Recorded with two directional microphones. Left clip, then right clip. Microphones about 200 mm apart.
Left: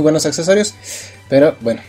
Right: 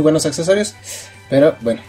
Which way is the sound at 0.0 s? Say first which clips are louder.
Left 1 dB; 15° left (ahead or behind).